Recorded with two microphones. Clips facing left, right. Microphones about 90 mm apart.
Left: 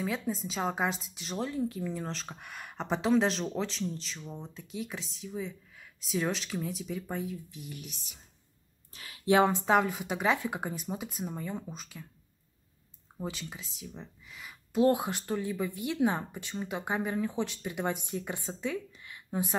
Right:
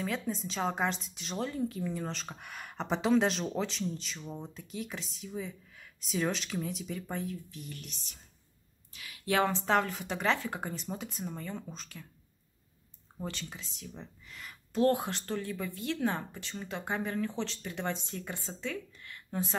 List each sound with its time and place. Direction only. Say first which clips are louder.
0.0 s speech: left 1 dB; 5° left (ahead or behind)
8.9 s a sound: left 1 dB; 35° left (ahead or behind)
9.2 s speech: left 5 dB; 20° left (ahead or behind)
13.2 s speech: left 2 dB; 5° left (ahead or behind)